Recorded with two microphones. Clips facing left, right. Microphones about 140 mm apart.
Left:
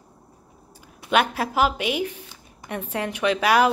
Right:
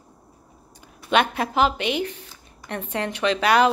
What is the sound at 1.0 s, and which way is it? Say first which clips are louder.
A woman's voice: right 1 dB; 5° left (ahead or behind).